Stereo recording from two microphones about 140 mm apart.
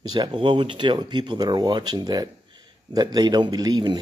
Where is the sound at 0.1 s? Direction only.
30° right (ahead or behind).